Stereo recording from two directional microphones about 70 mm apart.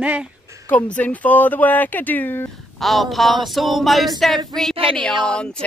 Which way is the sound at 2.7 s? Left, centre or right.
Centre.